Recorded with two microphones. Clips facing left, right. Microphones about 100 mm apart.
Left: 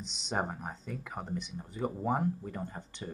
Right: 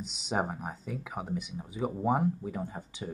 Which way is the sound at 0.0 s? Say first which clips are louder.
Right 3 dB; 5° right (ahead or behind).